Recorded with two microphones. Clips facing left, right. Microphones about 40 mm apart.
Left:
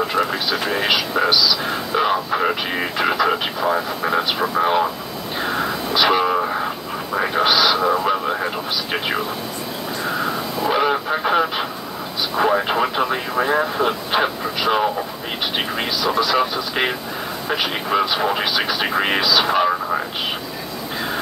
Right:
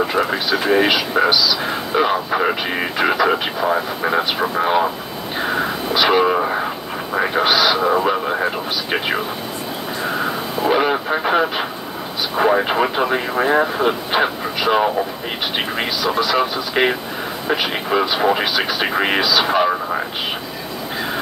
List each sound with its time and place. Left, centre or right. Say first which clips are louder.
0.0 s speech: right 2 dB; centre
5.4 s vehicle: right 2 dB; centre
7.2 s speech: right 1 dB; centre
10.0 s vehicle: right 1 dB; centre
10.7 s speech: right 2 dB; centre